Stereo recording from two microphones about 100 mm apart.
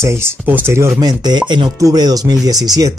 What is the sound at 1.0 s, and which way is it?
Speech, 45° right (ahead or behind).